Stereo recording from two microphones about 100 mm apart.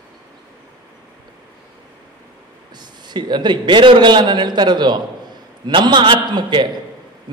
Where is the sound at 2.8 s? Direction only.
45° right (ahead or behind).